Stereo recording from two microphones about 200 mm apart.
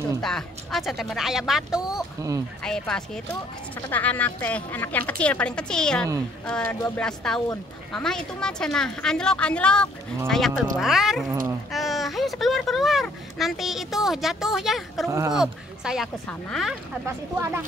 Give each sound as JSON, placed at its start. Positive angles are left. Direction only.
{"t": 0.2, "sound": "a woman's voice", "side_deg": 0}
{"t": 15.0, "sound": "speech", "side_deg": -15}
{"t": 15.3, "sound": "speech", "side_deg": -5}
{"t": 17.0, "sound": "speech", "side_deg": -15}